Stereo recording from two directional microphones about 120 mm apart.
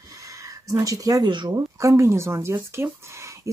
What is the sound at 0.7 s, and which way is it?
Speech, 30° right (ahead or behind).